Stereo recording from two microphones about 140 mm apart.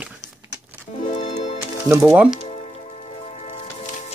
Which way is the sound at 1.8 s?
15° right (ahead or behind).